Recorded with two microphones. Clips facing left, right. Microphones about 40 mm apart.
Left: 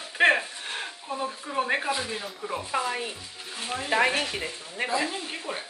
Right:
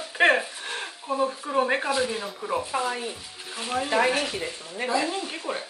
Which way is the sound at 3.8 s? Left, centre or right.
Centre.